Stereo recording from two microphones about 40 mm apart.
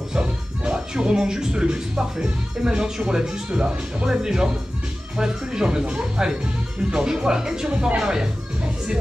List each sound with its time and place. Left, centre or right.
0.1 s speech: right